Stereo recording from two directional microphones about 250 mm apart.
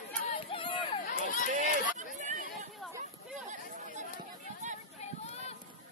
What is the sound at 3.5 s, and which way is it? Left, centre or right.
Chatter, right.